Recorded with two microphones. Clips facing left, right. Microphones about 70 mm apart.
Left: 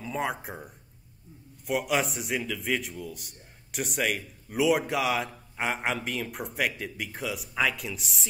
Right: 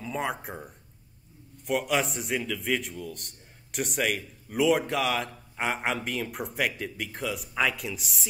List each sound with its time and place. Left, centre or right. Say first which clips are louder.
0.0 s a man's voice: even; centre